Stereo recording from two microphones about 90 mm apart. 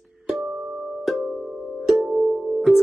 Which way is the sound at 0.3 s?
5° right (ahead or behind).